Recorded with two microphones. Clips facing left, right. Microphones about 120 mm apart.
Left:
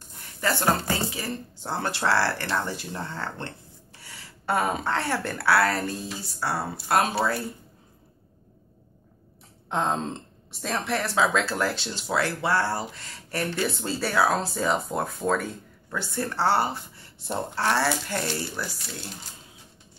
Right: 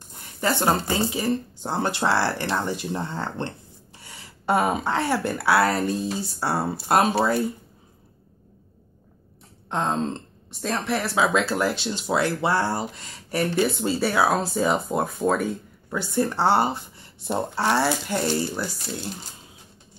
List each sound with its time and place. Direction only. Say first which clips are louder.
0.4 s speech: right 2 dB; 20° right (ahead or behind)
9.7 s speech: right 2 dB; centre (ahead or behind); by 18.2 s 15° right (ahead or behind)